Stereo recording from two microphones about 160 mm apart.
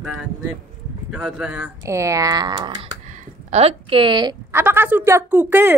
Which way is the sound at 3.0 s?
40° right (ahead or behind).